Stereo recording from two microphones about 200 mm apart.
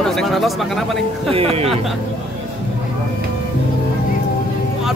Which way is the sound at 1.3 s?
30° right (ahead or behind).